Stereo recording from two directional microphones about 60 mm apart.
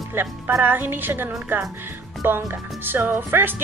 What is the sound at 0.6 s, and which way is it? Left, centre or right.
Speech, right.